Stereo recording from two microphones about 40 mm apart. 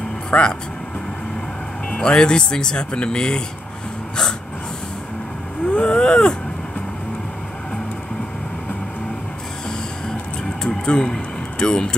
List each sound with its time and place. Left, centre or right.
0.3 s speech: left
1.9 s speech: left
5.7 s vehicle: left
10.9 s speech: centre